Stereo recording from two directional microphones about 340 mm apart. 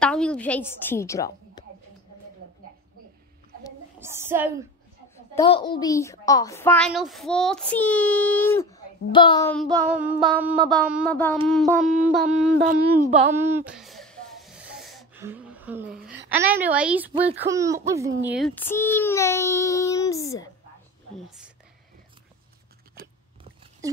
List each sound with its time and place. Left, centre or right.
0.0 s a woman's voice: centre
4.0 s speech: centre
5.1 s a woman's voice: centre
13.3 s a sound: centre
16.4 s a woman's voice: centre
23.0 s biting: right